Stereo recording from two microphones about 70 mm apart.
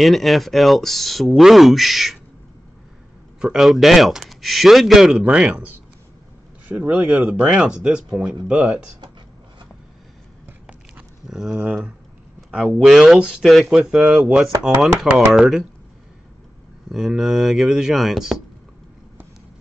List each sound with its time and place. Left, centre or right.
0.0 s speech: centre
3.5 s speech: centre
5.2 s speech: centre
6.7 s speech: centre
7.1 s speech: centre
7.4 s speech: centre
11.2 s speech: centre
14.6 s speech: centre
16.9 s speech: centre